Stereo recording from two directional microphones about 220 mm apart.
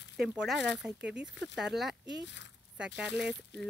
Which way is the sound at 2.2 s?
55° left (ahead or behind).